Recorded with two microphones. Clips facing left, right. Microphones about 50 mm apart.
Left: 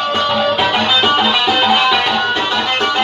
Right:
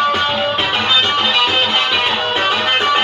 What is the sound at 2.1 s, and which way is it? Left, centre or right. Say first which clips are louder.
Music: left 1 dB; right.